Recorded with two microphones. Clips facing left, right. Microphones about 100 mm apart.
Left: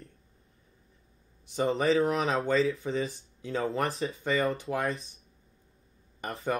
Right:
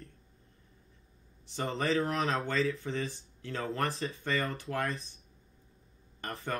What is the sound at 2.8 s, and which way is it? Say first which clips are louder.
Speech: left 4 dB; 15° left (ahead or behind).